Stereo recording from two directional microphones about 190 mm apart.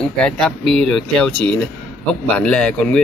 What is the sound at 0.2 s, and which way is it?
Speech, 5° left (ahead or behind).